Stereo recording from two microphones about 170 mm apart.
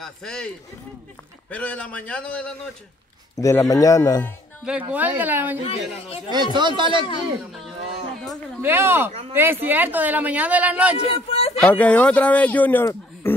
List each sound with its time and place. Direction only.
0.0 s speech: 5° left (ahead or behind)
1.5 s speech: 10° left (ahead or behind)
3.3 s speech: 20° left (ahead or behind)
4.6 s speech: 10° right (ahead or behind)
5.6 s speech: 35° left (ahead or behind)
6.3 s speech: 25° right (ahead or behind)
8.5 s speech: 15° right (ahead or behind)
11.0 s speech: 35° left (ahead or behind)
11.5 s speech: 5° left (ahead or behind)